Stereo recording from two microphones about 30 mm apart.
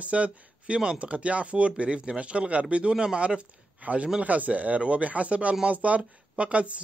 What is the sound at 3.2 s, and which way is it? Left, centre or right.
Speech, right.